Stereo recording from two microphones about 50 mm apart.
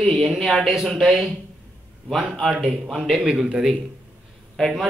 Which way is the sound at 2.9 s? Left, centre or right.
Centre.